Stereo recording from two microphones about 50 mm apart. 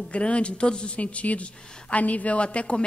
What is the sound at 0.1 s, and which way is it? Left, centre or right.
Speech, left.